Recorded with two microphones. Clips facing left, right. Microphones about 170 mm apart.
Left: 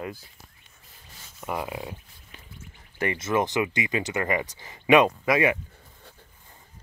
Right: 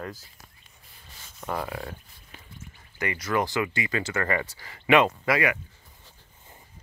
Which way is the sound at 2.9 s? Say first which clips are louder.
Left 2 dB; 25° left (ahead or behind).